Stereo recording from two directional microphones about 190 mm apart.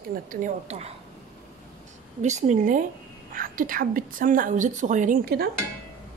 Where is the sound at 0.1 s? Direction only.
45° right (ahead or behind).